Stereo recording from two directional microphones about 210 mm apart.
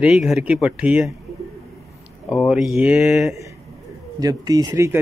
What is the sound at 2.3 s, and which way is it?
Speech, centre (ahead or behind).